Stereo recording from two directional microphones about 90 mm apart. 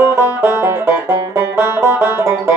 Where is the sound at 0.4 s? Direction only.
25° right (ahead or behind).